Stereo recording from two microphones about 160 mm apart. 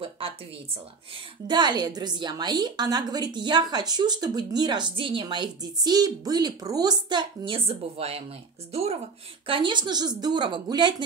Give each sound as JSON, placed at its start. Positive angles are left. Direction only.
{"t": 1.5, "sound": "a woman's voice", "side_deg": -25}